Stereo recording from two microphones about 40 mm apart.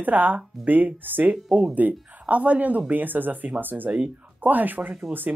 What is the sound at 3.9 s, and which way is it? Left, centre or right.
Speech, right.